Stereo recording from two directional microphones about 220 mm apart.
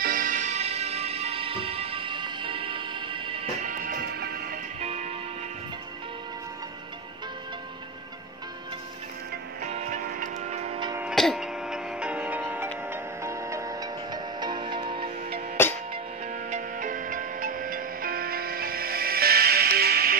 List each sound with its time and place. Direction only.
0.0 s music: 40° right (ahead or behind); by 3.4 s 25° right (ahead or behind)
3.6 s music: 40° right (ahead or behind)
4.7 s music: 30° right (ahead or behind)
9.6 s music: 30° right (ahead or behind)
10.9 s music: 5° right (ahead or behind); by 15.4 s 25° right (ahead or behind)
16.4 s music: 35° right (ahead or behind)